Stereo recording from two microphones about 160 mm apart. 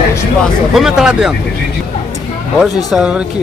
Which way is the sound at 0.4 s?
Centre (ahead or behind).